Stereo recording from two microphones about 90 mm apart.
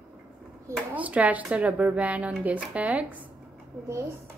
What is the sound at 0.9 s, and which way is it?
Speech, 15° right (ahead or behind).